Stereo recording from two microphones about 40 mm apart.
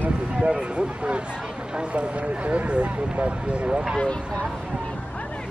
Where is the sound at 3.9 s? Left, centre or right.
Left.